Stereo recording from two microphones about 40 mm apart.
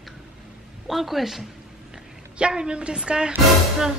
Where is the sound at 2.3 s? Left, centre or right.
Right.